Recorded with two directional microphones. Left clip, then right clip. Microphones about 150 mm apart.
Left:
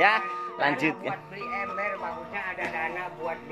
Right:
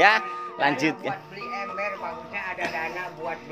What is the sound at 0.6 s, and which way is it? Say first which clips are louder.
Speech: right 2 dB; 15° right (ahead or behind).